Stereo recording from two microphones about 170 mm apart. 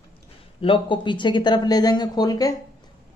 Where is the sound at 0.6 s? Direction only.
30° left (ahead or behind).